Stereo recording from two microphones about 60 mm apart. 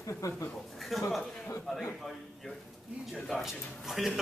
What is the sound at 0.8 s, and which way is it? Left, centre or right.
A man's voice, centre.